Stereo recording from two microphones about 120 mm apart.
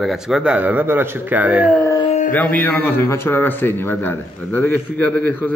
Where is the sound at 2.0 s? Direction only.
75° left (ahead or behind).